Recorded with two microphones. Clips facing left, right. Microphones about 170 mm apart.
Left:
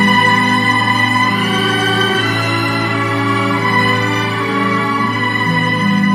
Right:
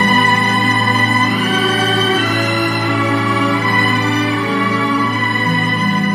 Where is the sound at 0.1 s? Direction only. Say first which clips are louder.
Left 1 dB; centre (ahead or behind).